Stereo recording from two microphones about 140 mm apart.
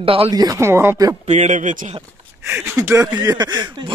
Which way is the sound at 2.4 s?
15° right (ahead or behind).